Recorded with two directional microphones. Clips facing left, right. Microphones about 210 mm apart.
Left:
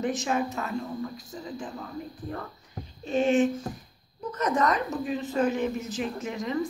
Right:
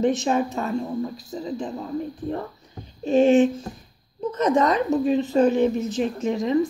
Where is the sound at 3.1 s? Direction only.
30° right (ahead or behind).